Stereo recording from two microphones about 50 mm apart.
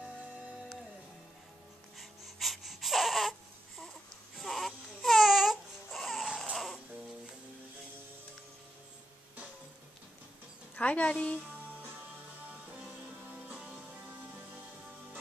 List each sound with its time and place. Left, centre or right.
2.0 s crying: centre
4.4 s baby cry: centre
6.5 s music: centre
10.8 s speech: left
13.3 s music: right